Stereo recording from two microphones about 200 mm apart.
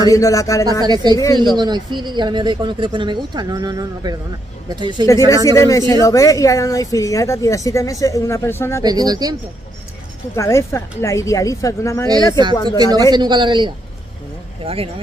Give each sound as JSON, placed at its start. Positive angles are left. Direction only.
{"t": 0.1, "sound": "a woman's voice", "side_deg": 15}
{"t": 0.7, "sound": "speech", "side_deg": -20}
{"t": 1.1, "sound": "speech", "side_deg": 20}
{"t": 1.4, "sound": "speech", "side_deg": -20}
{"t": 5.0, "sound": "a woman's voice", "side_deg": 15}
{"t": 8.8, "sound": "speech", "side_deg": -20}
{"t": 10.3, "sound": "a woman's voice", "side_deg": 15}
{"t": 12.1, "sound": "speech", "side_deg": -20}